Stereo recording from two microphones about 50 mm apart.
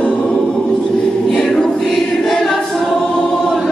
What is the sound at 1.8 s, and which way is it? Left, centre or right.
Choir, centre.